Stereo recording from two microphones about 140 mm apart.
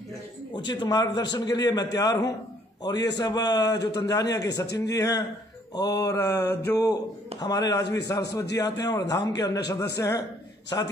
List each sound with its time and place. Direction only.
0.7 s a man's voice: 30° left (ahead or behind)
5.8 s mantra: 25° left (ahead or behind)
6.8 s a man's voice: 25° left (ahead or behind)